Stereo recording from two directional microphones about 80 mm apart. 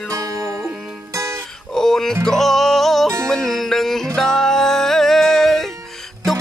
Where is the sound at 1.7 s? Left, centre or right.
Centre.